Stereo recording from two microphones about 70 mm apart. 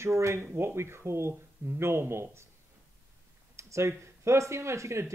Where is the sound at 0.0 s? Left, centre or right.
Right.